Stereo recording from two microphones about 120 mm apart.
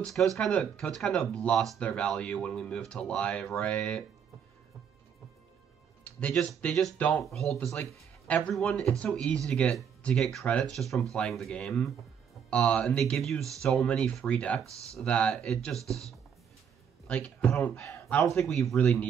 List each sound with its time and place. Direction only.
0.0 s speech: 5° left (ahead or behind)
6.0 s speech: 10° left (ahead or behind)
15.8 s speech: 25° right (ahead or behind)
17.1 s speech: 10° left (ahead or behind)